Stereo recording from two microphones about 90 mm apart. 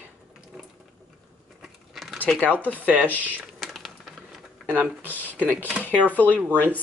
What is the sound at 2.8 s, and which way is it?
Speech, 15° right (ahead or behind).